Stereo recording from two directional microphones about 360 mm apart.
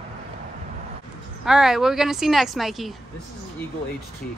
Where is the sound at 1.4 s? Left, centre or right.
Centre.